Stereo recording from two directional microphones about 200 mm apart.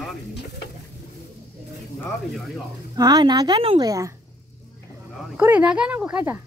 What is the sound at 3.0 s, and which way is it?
Speech, 20° right (ahead or behind).